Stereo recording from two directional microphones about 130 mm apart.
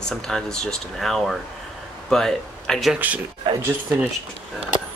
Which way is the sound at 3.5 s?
40° right (ahead or behind).